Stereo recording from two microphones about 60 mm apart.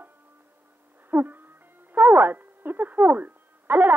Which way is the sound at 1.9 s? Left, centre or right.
Right.